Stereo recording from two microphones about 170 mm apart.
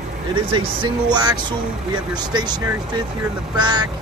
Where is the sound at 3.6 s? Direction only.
25° right (ahead or behind).